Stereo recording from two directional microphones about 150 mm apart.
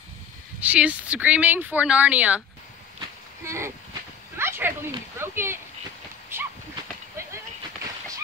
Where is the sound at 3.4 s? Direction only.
20° right (ahead or behind).